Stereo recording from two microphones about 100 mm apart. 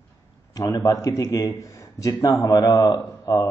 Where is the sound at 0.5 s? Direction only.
35° left (ahead or behind).